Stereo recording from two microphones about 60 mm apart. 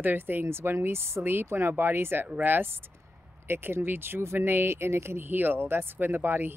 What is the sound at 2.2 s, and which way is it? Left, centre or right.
Speech, right.